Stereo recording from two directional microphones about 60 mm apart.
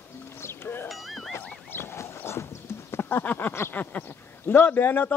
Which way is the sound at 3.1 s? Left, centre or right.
Left.